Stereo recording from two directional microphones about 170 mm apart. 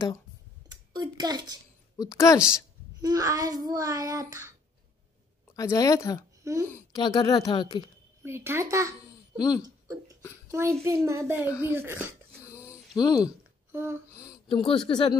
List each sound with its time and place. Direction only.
0.7 s a woman's voice: 25° right (ahead or behind)
2.0 s speech: 20° left (ahead or behind)
2.3 s a woman's voice: 5° right (ahead or behind)
3.0 s child singing: 20° right (ahead or behind)
5.6 s speech: 20° left (ahead or behind)
8.2 s a child's voice: 15° right (ahead or behind)
9.4 s speech: 20° left (ahead or behind)
10.5 s a child's voice: 15° right (ahead or behind)
11.4 s speech: 20° left (ahead or behind)
11.7 s a child's voice: 10° right (ahead or behind)
12.4 s a sound: 20° left (ahead or behind)
13.7 s a sound: 15° right (ahead or behind)
14.1 s a sound: 20° left (ahead or behind)
14.5 s speech: 30° left (ahead or behind)